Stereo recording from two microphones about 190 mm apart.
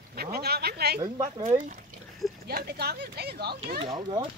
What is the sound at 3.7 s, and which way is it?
Speech, 35° right (ahead or behind).